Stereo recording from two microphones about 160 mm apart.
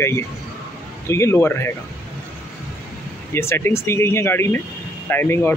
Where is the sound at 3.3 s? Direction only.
15° left (ahead or behind).